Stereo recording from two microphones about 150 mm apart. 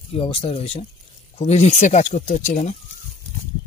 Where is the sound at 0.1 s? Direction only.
40° left (ahead or behind).